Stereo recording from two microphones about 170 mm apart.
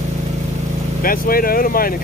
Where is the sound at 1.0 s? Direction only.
55° left (ahead or behind).